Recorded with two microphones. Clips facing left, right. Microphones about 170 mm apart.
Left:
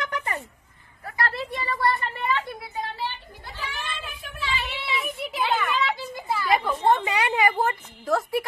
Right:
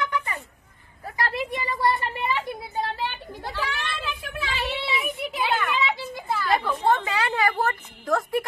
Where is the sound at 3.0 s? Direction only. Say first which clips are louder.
Right 3 dB; 90° right.